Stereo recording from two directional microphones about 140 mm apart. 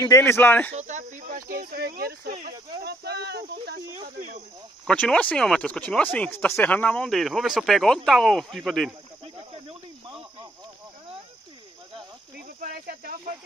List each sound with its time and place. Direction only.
0.0 s speech: 20° left (ahead or behind)
0.7 s speech: 55° right (ahead or behind); by 2.5 s 80° right
4.8 s speech: 5° left (ahead or behind)
12.4 s cricket: 90° right